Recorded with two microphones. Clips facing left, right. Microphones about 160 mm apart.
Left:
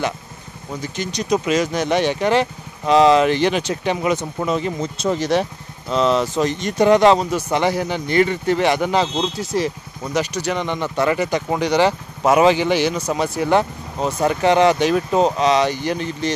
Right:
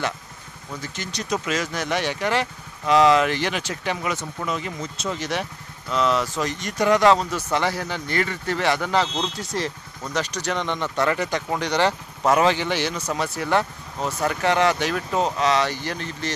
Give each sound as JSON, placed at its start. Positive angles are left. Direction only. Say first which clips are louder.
{"t": 0.8, "sound": "speech", "louder": "left 7 dB", "side_deg": 15}
{"t": 9.4, "sound": "speech", "louder": "left 6 dB", "side_deg": 10}